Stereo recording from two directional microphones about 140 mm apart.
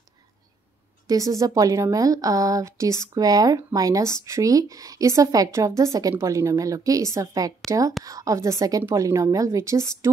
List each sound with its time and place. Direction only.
1.0 s a woman's voice: 25° right (ahead or behind)